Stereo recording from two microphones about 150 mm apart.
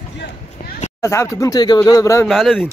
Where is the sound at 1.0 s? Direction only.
20° left (ahead or behind).